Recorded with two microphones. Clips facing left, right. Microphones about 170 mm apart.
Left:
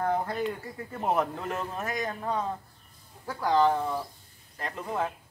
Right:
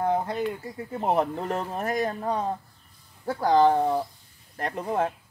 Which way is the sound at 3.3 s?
45° right (ahead or behind).